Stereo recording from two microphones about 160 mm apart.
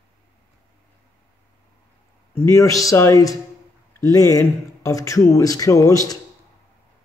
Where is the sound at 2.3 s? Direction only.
20° left (ahead or behind).